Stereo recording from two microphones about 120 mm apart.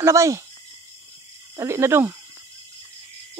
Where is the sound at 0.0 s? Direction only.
25° right (ahead or behind).